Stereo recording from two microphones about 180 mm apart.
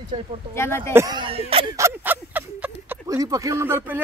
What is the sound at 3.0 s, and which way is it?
Speech, 20° right (ahead or behind).